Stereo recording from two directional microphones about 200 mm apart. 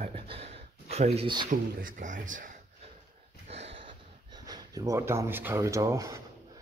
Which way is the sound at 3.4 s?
30° right (ahead or behind).